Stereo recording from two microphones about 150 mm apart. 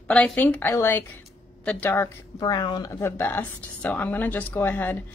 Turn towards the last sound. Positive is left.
turn(degrees=10)  # may be behind; listen again after turning